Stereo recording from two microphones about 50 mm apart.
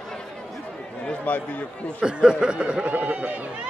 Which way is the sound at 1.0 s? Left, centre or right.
Left.